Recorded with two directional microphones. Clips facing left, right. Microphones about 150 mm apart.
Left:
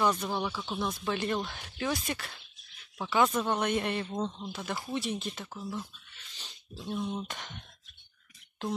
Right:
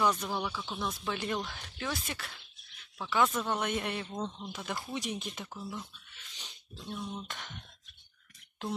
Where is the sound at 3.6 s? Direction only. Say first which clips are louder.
Left 4 dB; 5° right (ahead or behind).